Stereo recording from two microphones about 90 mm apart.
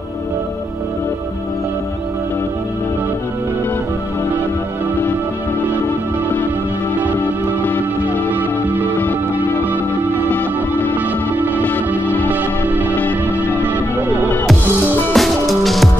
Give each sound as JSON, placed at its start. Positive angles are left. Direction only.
{"t": 10.3, "sound": "music", "side_deg": 20}
{"t": 11.3, "sound": "music", "side_deg": -20}
{"t": 11.6, "sound": "music", "side_deg": 20}
{"t": 12.3, "sound": "music", "side_deg": -20}
{"t": 12.9, "sound": "music", "side_deg": 20}
{"t": 13.7, "sound": "music", "side_deg": -20}
{"t": 15.1, "sound": "music", "side_deg": 0}